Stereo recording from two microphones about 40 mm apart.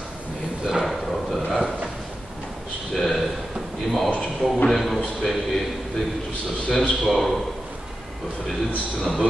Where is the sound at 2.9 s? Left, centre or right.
Centre.